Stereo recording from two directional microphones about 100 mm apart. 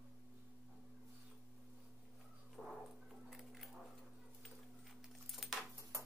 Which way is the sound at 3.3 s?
Centre (ahead or behind).